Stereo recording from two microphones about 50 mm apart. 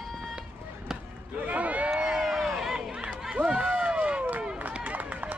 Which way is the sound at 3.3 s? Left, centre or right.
Right.